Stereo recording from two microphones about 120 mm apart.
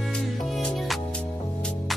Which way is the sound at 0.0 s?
Centre (ahead or behind).